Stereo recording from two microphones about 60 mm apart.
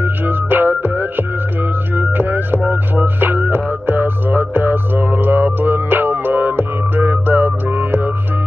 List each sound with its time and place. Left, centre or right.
0.0 s music: right